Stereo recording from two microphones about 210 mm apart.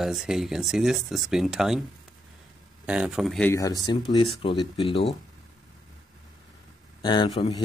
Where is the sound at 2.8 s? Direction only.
5° right (ahead or behind).